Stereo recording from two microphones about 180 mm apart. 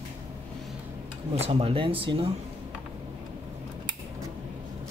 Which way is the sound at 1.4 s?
30° right (ahead or behind).